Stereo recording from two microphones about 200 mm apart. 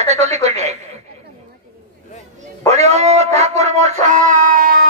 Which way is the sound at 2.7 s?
35° right (ahead or behind).